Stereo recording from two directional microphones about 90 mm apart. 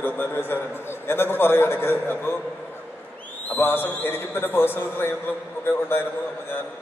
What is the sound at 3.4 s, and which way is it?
A man's voice, 25° left (ahead or behind).